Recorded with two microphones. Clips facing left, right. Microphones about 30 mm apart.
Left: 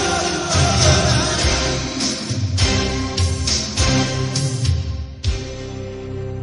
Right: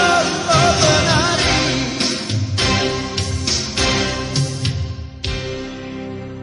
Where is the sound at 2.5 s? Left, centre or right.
Right.